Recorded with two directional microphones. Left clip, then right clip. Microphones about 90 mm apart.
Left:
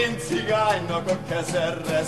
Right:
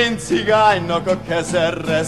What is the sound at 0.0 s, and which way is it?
Music, 30° right (ahead or behind).